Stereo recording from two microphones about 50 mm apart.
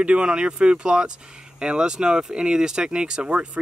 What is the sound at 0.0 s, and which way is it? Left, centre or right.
Speech, right.